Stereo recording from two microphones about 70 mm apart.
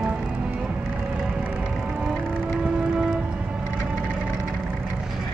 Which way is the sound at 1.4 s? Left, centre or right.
Centre.